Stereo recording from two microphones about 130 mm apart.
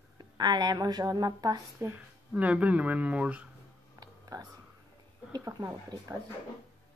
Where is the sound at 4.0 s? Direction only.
30° right (ahead or behind).